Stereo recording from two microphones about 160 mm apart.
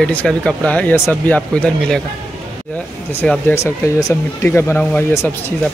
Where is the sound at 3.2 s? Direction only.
10° left (ahead or behind).